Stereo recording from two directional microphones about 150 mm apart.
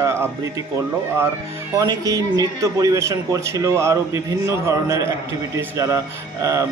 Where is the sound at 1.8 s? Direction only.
25° right (ahead or behind).